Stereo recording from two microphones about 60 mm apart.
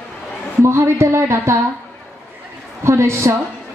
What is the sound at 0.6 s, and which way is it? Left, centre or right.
Speech, right.